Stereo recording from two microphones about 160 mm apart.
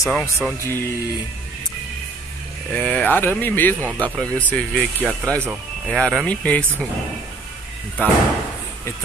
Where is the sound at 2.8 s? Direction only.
10° left (ahead or behind).